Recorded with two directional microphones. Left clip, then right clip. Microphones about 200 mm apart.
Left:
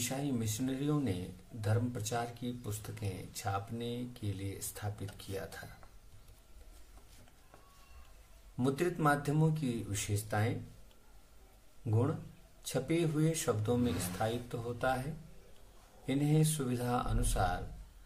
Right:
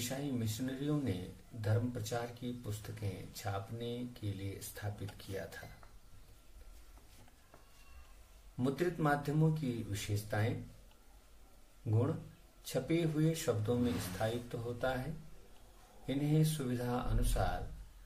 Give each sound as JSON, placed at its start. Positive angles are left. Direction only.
{"t": 0.0, "sound": "speech", "side_deg": 25}
{"t": 8.5, "sound": "speech", "side_deg": 30}
{"t": 12.6, "sound": "speech", "side_deg": 30}
{"t": 16.1, "sound": "speech", "side_deg": 30}